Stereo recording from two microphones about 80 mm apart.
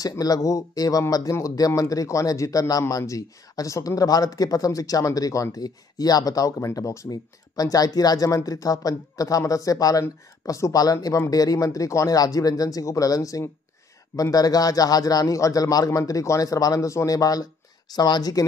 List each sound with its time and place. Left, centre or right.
0.2 s a man's voice: left
7.1 s a man's voice: left